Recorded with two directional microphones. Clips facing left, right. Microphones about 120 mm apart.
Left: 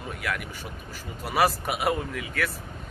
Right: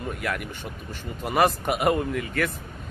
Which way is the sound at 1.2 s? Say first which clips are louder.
Right 2 dB; 5° left (ahead or behind).